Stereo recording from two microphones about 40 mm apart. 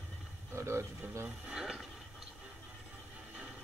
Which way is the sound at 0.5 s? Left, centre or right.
Right.